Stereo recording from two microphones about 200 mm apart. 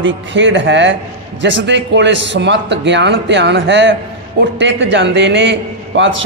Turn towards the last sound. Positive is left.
turn(degrees=-65)  # may be behind; listen again after turning